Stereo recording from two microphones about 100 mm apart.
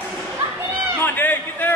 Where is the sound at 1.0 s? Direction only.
20° left (ahead or behind).